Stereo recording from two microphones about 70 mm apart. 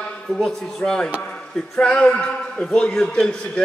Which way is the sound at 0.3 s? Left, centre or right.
Centre.